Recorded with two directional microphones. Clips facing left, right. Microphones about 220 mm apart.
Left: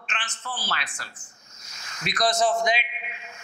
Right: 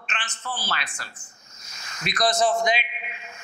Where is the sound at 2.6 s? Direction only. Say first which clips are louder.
Right 1 dB; 15° right (ahead or behind).